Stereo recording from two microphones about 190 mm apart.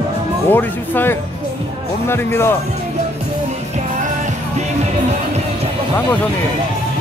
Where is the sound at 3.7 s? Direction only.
40° right (ahead or behind).